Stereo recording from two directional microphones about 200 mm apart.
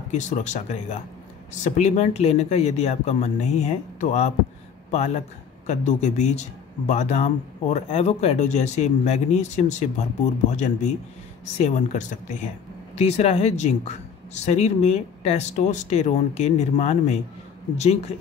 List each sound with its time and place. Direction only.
0.1 s speech: 35° left (ahead or behind)